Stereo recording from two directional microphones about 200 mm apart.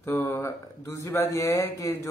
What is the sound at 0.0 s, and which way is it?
Speech, 10° left (ahead or behind).